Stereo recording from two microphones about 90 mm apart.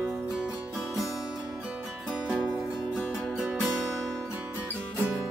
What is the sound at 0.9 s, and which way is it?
Music, 5° right (ahead or behind).